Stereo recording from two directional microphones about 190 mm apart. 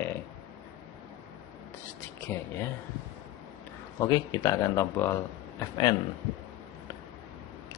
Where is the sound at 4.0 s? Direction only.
15° left (ahead or behind).